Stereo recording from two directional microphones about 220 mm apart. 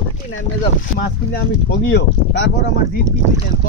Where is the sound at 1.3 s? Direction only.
45° left (ahead or behind).